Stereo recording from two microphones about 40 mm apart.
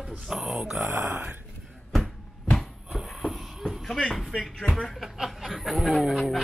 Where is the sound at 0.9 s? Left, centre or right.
Right.